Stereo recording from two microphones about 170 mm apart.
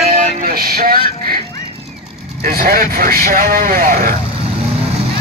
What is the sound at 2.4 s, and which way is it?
Speech, 60° right (ahead or behind).